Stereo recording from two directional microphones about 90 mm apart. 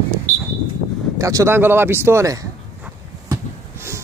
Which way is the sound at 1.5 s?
25° right (ahead or behind).